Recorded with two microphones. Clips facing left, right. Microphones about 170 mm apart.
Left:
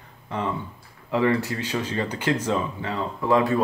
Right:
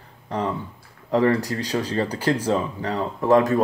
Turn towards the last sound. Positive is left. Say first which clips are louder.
# right 3 dB
turn(degrees=-45)  # may be behind; listen again after turning